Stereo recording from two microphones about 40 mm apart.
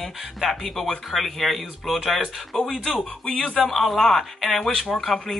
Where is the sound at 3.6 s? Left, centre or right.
Centre.